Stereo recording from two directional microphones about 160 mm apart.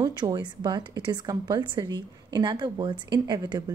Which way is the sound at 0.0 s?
25° right (ahead or behind).